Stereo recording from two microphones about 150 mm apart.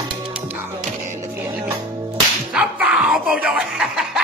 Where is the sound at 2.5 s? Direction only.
5° right (ahead or behind).